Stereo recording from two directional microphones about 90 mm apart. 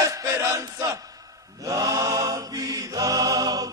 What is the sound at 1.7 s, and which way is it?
Mantra, 40° right (ahead or behind).